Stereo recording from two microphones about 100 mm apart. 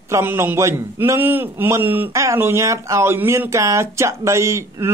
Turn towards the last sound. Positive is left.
turn(degrees=-30)  # may be behind; listen again after turning